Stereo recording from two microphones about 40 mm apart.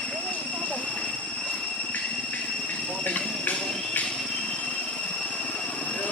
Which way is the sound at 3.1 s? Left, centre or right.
Left.